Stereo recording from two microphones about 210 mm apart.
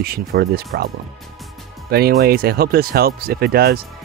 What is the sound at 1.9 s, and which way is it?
Speech, 45° right (ahead or behind).